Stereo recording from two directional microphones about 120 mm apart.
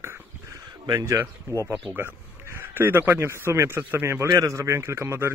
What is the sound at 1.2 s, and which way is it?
Speech, 25° right (ahead or behind).